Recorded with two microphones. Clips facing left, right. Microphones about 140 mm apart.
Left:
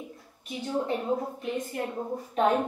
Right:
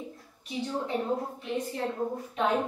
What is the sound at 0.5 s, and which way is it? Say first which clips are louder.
Speech: right 1 dB; 45° left (ahead or behind).